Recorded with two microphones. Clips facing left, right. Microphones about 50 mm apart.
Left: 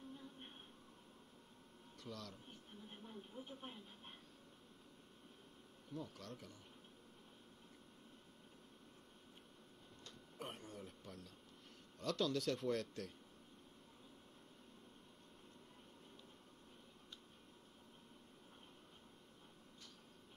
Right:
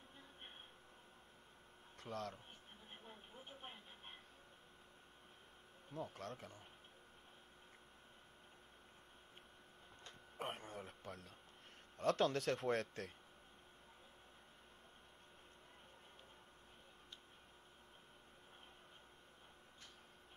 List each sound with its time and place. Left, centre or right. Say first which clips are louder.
2.0 s a man's voice: right 5 dB; right
2.9 s television: left 3 dB; right
5.9 s speech: right 2 dB; right
10.0 s a sound: right 4 dB; right
12.0 s speech: right 3 dB; right